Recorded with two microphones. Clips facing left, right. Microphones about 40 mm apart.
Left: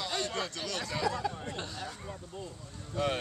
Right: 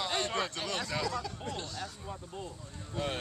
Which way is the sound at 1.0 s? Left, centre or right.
Centre.